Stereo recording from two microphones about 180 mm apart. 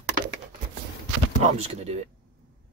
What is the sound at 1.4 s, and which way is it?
Speech, 35° right (ahead or behind).